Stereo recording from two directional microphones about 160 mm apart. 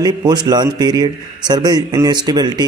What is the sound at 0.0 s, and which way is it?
Speech, 25° right (ahead or behind).